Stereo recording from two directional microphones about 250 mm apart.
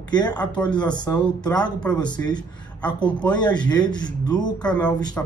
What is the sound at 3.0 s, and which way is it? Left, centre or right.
Mantra, centre.